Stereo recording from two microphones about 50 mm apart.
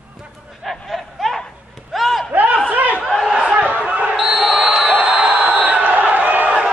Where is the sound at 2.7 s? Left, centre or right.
Right.